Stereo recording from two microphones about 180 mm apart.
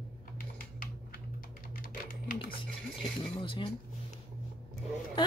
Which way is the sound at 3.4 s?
25° left (ahead or behind).